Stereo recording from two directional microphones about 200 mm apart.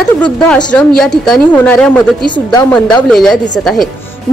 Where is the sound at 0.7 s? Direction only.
Centre (ahead or behind).